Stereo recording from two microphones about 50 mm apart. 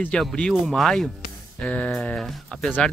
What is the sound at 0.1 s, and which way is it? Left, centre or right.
Speech, centre.